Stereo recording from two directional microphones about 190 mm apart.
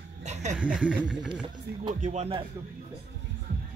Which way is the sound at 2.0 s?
35° right (ahead or behind).